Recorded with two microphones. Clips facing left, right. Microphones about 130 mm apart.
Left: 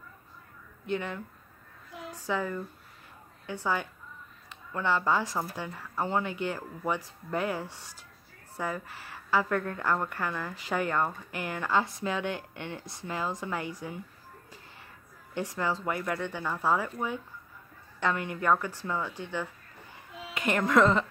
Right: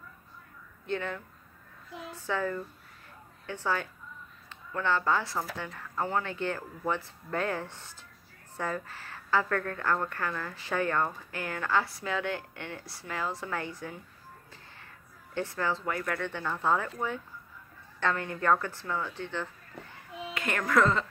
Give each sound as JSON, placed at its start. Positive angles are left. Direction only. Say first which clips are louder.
{"t": 0.8, "sound": "a woman's voice", "louder": "left 1 dB", "side_deg": 15}
{"t": 15.3, "sound": "a woman's voice", "louder": "even", "side_deg": 15}
{"t": 18.0, "sound": "a woman's voice", "louder": "even", "side_deg": 15}